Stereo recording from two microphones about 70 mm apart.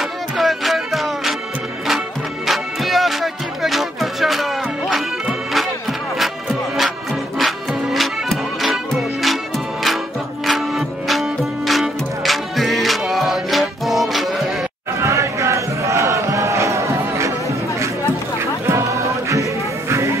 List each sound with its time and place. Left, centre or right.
0.4 s music: centre
2.4 s music: centre
10.4 s music: centre
15.0 s crowd: right
18.4 s music: right